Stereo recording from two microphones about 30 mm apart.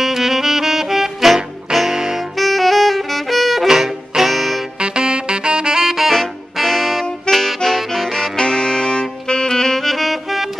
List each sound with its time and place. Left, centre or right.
0.0 s saxophone: centre
2.3 s saxophone: centre
3.6 s saxophone: centre
4.7 s saxophone: right
5.9 s saxophone: centre
6.1 s saxophone: centre
7.2 s music: centre
8.4 s saxophone: centre